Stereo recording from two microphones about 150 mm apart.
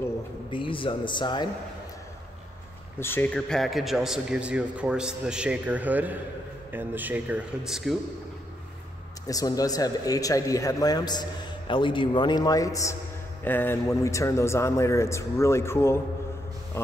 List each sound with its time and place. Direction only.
0.5 s a man's voice: 35° left (ahead or behind)
3.0 s a man's voice: 15° left (ahead or behind); by 8.0 s centre (ahead or behind)
9.3 s a man's voice: 25° left (ahead or behind)